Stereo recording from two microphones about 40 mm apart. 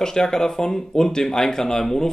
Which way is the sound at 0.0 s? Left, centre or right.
Centre.